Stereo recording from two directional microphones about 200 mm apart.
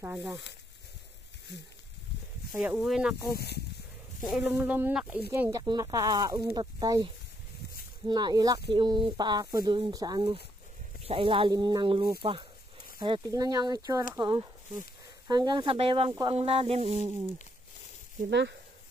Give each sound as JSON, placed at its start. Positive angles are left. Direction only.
{"t": 0.0, "sound": "speech", "side_deg": -5}
{"t": 2.5, "sound": "speech", "side_deg": -5}
{"t": 3.3, "sound": "speech", "side_deg": 50}
{"t": 4.2, "sound": "speech", "side_deg": 0}
{"t": 12.2, "sound": "a sound", "side_deg": -25}
{"t": 13.0, "sound": "speech", "side_deg": -20}
{"t": 16.3, "sound": "a sound", "side_deg": -30}
{"t": 18.3, "sound": "speech", "side_deg": -60}